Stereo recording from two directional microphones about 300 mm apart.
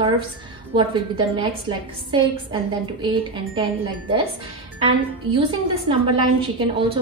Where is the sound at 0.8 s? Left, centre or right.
Centre.